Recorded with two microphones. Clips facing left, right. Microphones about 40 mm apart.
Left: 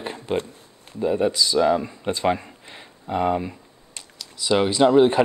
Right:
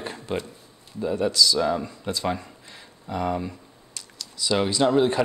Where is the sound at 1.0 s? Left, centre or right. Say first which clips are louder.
Left 1 dB; left.